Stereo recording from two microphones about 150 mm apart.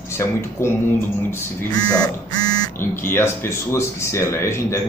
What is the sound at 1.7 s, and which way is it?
Speech, 25° left (ahead or behind).